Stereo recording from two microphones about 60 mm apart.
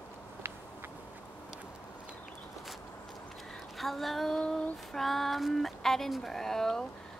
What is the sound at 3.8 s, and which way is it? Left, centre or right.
Speech, centre.